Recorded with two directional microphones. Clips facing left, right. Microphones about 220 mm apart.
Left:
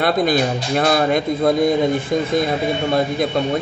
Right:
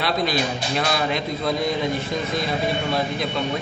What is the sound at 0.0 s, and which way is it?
A man's voice, 50° left (ahead or behind).